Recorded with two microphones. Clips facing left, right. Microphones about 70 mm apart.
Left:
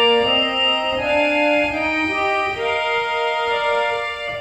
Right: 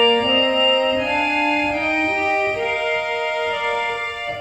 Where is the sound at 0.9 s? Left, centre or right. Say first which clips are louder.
Left 2 dB; centre.